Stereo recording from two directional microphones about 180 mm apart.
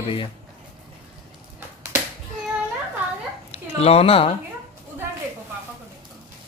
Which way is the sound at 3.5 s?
35° left (ahead or behind).